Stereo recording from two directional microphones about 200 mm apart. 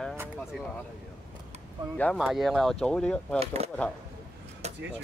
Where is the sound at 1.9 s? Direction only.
5° left (ahead or behind).